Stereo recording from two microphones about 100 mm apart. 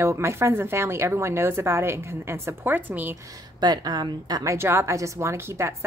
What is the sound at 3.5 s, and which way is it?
A woman's voice, 40° right (ahead or behind).